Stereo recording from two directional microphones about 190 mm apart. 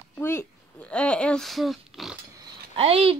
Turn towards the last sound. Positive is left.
turn(degrees=-30)  # may be behind; listen again after turning